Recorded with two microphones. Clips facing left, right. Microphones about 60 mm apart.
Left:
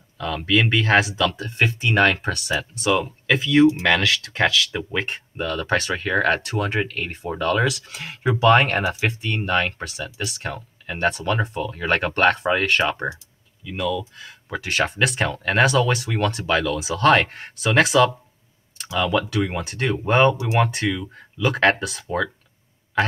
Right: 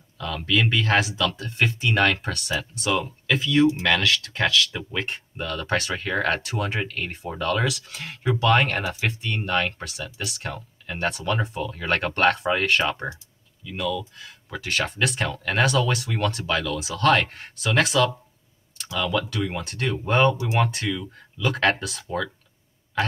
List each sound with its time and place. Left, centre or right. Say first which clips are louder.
0.2 s speech: left 3 dB; centre
8.2 s speech: left 4 dB; centre
12.8 s speech: left 3 dB; centre
19.6 s speech: left 4 dB; centre
20.7 s speech: left 4 dB; centre